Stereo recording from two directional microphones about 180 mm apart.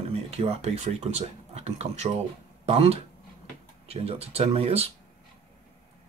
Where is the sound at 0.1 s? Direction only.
35° right (ahead or behind).